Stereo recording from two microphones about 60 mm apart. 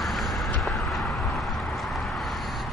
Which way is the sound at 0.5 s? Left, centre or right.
Left.